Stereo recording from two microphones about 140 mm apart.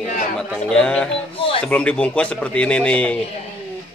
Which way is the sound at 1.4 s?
40° left (ahead or behind).